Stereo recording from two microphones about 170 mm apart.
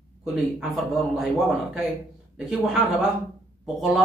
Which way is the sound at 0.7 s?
Centre (ahead or behind).